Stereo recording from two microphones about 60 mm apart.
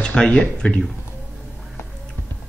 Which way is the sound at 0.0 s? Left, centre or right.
Centre.